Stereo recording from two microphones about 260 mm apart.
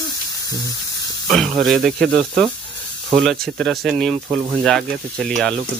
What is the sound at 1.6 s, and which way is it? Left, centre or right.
Speech, centre.